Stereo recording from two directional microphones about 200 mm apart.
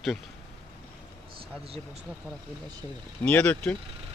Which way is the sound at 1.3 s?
30° right (ahead or behind).